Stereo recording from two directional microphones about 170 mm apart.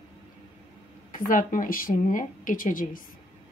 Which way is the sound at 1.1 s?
50° left (ahead or behind).